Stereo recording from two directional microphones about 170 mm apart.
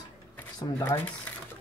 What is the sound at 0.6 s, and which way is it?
Speech, 15° left (ahead or behind).